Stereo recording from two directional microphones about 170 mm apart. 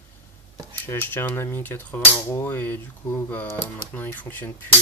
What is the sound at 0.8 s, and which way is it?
Speech, 10° left (ahead or behind).